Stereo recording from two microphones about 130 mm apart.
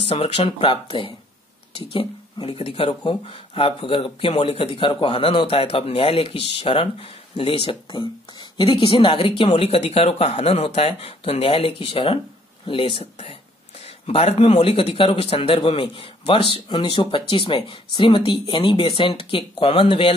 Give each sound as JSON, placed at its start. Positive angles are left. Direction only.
{"t": 0.0, "sound": "speech", "side_deg": 45}